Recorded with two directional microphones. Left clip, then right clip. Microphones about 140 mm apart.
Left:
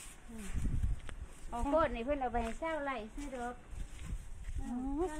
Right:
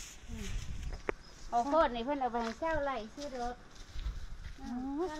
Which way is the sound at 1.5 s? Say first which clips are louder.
Right 3 dB; 65° right (ahead or behind).